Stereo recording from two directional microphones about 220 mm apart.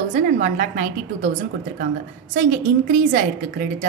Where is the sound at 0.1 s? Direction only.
35° right (ahead or behind).